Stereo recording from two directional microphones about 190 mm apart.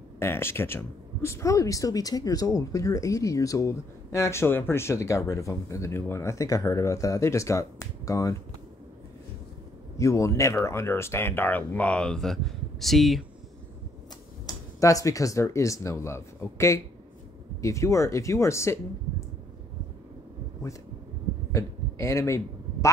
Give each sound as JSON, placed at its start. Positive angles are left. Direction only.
{"t": 0.2, "sound": "speech", "side_deg": 10}
{"t": 9.9, "sound": "speech", "side_deg": 15}
{"t": 14.4, "sound": "speech", "side_deg": 15}
{"t": 21.5, "sound": "a sound", "side_deg": 15}